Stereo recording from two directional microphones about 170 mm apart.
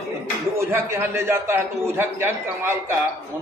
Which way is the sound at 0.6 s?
15° right (ahead or behind).